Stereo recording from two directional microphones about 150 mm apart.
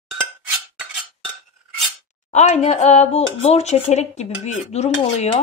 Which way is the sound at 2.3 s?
50° left (ahead or behind).